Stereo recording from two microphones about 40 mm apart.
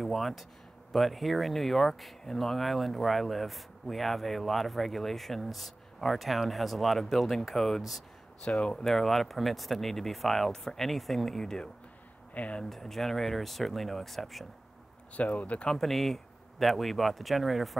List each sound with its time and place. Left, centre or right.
0.0 s speech: centre
8.5 s speech: left
8.7 s speech: centre
10.6 s speech: centre
10.9 s speech: centre
12.4 s speech: left
12.6 s speech: centre
15.1 s speech: left
15.7 s speech: centre